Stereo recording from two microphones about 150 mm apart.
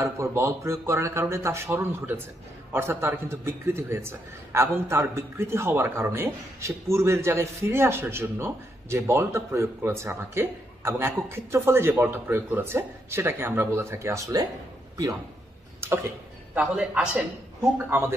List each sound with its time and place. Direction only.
0.0 s a man's voice: 20° right (ahead or behind)
15.8 s a sound: 15° right (ahead or behind)
16.5 s a man's voice: 5° right (ahead or behind)